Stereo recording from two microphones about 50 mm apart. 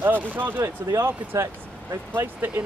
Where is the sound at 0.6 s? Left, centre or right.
Right.